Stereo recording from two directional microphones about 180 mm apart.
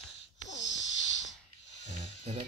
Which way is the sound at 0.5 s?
85° left.